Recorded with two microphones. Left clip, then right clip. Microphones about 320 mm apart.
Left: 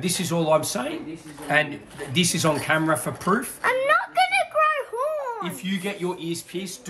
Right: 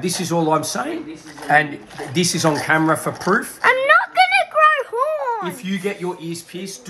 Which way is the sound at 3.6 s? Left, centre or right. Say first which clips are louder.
Right 8 dB; right.